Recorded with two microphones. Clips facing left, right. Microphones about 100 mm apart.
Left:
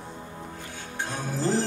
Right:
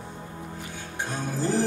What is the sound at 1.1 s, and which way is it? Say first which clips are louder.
Music: right 1 dB; 15° right (ahead or behind).